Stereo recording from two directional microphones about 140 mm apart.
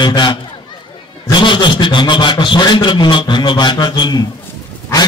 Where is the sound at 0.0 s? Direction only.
35° left (ahead or behind).